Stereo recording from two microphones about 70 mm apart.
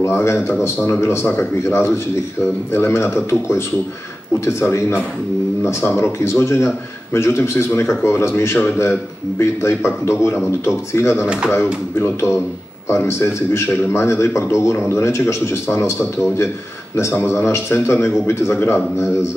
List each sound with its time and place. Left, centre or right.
0.0 s a man's voice: left
17.3 s a man's voice: left